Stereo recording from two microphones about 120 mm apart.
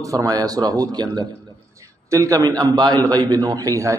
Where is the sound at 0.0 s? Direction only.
30° right (ahead or behind).